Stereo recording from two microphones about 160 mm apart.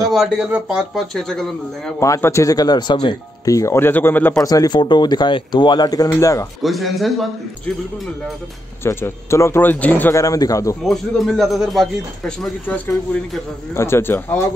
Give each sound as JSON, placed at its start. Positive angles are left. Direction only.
{"t": 0.1, "sound": "speech", "side_deg": -5}
{"t": 2.0, "sound": "speech", "side_deg": 20}
{"t": 4.5, "sound": "speech", "side_deg": 25}
{"t": 6.6, "sound": "speech", "side_deg": 0}
{"t": 8.8, "sound": "speech", "side_deg": 15}
{"t": 10.8, "sound": "speech", "side_deg": 0}